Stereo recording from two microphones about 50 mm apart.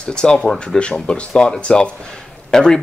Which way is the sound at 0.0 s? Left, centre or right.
Centre.